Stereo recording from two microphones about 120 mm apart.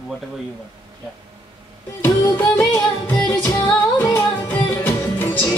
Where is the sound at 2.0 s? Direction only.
20° left (ahead or behind).